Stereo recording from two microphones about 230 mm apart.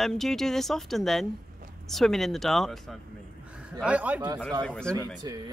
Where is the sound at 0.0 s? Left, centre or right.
Centre.